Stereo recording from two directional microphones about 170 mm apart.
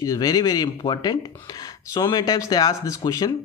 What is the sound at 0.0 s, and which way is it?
Speech, 20° left (ahead or behind).